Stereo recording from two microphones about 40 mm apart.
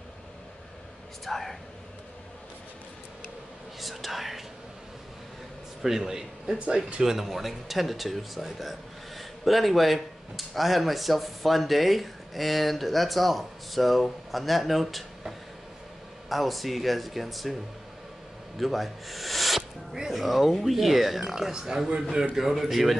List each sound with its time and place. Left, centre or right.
1.2 s speech: centre
3.8 s speech: centre
5.8 s speech: centre
16.3 s speech: centre
18.6 s speech: centre
22.3 s speech: centre